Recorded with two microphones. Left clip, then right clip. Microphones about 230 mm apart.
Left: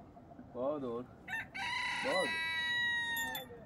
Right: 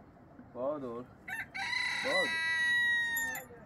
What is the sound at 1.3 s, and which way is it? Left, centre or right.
Chicken, right.